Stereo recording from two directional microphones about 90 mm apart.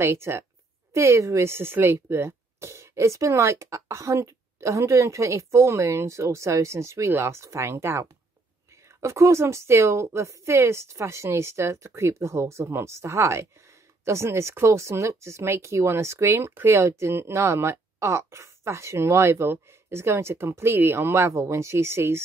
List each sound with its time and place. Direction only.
0.0 s a woman's voice: 30° right (ahead or behind)